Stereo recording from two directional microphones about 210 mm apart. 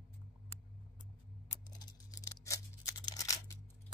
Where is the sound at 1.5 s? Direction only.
15° left (ahead or behind).